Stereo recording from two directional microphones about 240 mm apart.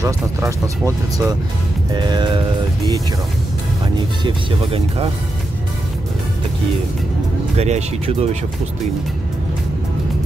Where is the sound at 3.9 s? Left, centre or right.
Right.